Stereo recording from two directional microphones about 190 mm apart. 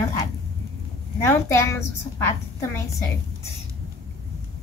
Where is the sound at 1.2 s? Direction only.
15° left (ahead or behind).